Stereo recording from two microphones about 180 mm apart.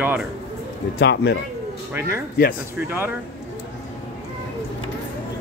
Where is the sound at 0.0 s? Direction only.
10° right (ahead or behind).